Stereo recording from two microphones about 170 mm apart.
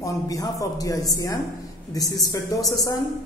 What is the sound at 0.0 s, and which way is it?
A man's voice, 20° left (ahead or behind).